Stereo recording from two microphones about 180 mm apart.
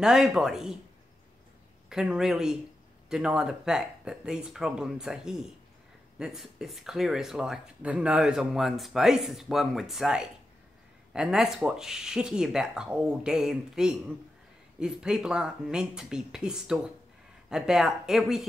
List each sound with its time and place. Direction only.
0.0 s speech: 5° right (ahead or behind)
1.9 s speech: 5° right (ahead or behind)